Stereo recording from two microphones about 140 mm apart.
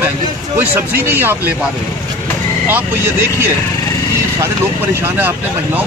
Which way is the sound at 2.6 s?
15° right (ahead or behind).